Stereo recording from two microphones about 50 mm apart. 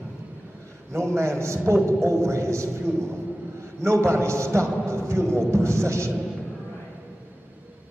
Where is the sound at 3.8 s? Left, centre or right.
Right.